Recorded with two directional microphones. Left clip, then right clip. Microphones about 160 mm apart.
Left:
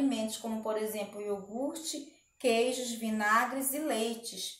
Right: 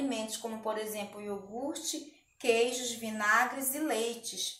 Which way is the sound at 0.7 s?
15° left (ahead or behind).